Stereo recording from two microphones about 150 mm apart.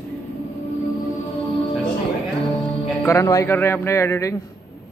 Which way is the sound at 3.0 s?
20° left (ahead or behind).